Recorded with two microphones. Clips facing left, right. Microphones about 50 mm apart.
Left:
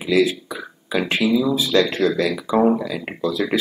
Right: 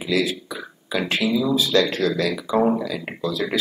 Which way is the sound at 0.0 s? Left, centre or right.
Centre.